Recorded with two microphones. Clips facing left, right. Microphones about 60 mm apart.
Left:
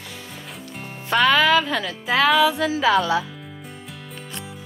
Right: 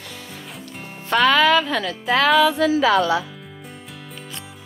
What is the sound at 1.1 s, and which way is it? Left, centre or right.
Speech, centre.